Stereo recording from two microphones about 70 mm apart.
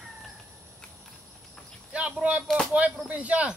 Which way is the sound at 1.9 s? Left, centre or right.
Centre.